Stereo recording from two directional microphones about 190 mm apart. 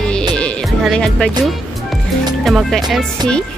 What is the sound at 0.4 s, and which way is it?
Music, 5° left (ahead or behind).